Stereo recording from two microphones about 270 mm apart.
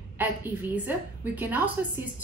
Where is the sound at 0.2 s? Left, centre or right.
Centre.